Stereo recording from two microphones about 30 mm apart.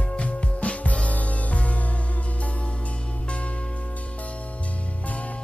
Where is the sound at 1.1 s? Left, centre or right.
Left.